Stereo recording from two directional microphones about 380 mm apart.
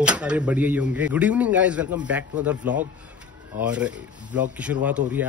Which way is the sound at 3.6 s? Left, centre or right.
Centre.